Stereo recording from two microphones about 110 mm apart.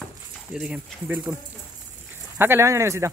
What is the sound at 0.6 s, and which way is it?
Speech, 10° right (ahead or behind).